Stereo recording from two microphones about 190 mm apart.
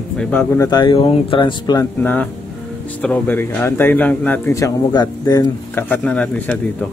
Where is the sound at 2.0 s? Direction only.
10° left (ahead or behind).